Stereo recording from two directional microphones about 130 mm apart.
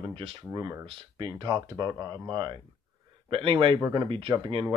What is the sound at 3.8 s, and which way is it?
Speech, 30° right (ahead or behind).